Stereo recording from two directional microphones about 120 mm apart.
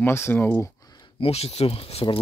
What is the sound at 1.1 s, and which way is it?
Speech, 55° left (ahead or behind).